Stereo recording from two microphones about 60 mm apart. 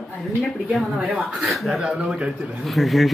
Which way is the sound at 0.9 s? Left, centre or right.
Centre.